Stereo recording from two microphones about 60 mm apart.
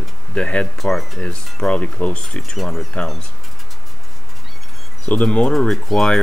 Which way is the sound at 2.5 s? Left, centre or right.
Centre.